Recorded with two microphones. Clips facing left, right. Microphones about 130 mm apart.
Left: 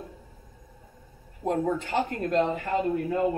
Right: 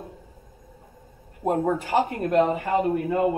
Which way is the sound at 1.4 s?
55° right (ahead or behind).